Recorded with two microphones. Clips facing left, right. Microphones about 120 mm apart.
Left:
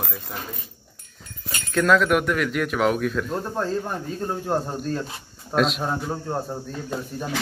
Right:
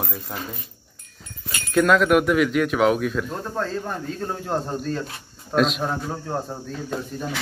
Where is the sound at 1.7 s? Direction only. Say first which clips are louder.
Right 2 dB; 5° right (ahead or behind).